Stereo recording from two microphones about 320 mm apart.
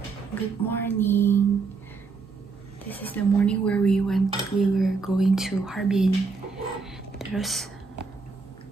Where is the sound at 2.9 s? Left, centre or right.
Centre.